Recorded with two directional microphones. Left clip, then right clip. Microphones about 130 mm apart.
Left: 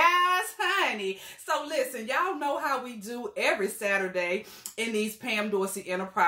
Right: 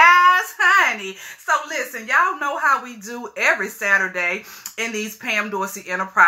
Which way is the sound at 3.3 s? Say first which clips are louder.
Right 8 dB; 35° left (ahead or behind).